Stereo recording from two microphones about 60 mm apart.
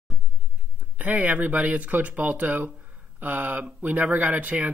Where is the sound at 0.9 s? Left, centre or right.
Right.